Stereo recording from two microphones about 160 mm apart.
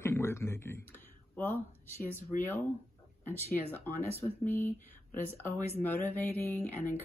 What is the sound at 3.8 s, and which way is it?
Speech, 15° left (ahead or behind).